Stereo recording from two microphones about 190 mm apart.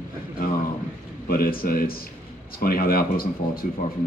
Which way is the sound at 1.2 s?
50° left (ahead or behind).